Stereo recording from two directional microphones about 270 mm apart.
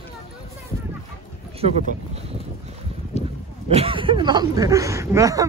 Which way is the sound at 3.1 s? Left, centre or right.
Left.